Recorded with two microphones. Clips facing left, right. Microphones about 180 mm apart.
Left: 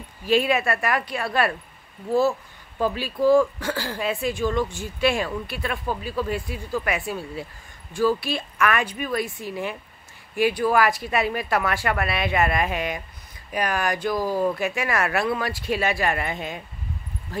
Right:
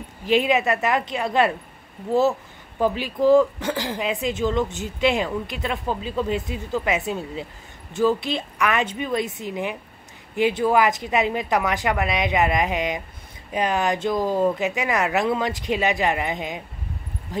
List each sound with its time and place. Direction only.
0.2 s speech: 20° right (ahead or behind)
2.8 s speech: 20° right (ahead or behind)
17.3 s a sound: 15° right (ahead or behind)